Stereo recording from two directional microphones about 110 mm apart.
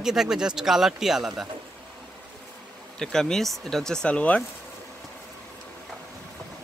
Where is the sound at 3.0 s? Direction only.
5° left (ahead or behind).